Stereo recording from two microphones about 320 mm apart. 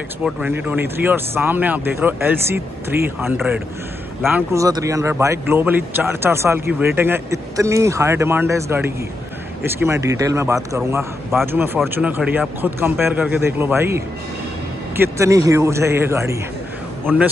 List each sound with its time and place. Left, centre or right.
0.2 s a man's voice: centre